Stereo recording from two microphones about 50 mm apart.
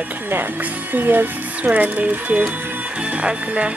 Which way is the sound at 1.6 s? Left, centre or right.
Right.